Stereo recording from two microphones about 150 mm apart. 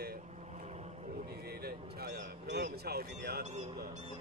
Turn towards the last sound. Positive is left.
turn(degrees=-50)  # may be behind; listen again after turning